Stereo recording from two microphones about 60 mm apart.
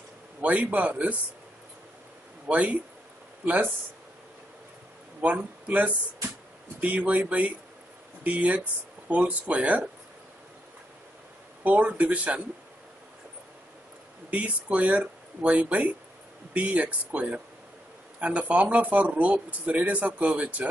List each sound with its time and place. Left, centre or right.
0.4 s speech: right
2.5 s speech: right
5.2 s speech: right
11.6 s speech: right
14.3 s speech: right